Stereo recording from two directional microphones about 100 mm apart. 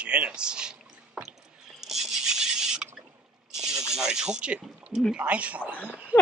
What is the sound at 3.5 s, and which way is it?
Snake, 5° right (ahead or behind).